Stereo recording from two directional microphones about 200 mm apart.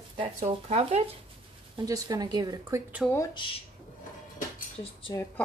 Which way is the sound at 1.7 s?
20° right (ahead or behind).